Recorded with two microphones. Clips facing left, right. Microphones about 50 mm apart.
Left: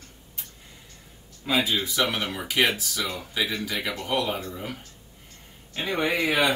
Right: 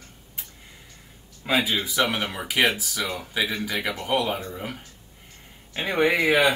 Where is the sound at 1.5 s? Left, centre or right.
Centre.